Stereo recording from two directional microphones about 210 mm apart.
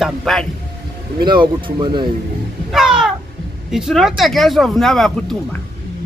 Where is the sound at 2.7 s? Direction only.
Centre (ahead or behind).